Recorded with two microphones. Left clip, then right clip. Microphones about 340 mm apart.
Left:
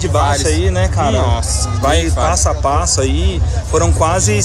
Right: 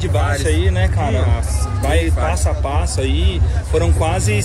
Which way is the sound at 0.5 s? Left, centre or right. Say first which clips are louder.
Left 4 dB; left.